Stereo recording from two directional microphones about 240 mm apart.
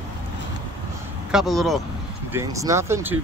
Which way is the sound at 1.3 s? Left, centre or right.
Centre.